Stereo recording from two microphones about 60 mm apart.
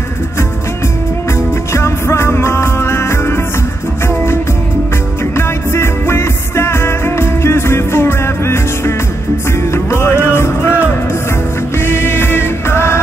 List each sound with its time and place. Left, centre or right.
1.7 s music: left
5.3 s music: left